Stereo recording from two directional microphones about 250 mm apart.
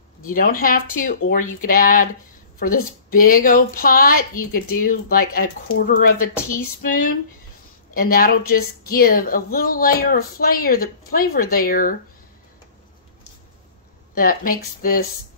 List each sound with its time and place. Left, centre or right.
0.2 s a woman's voice: left
14.1 s a woman's voice: left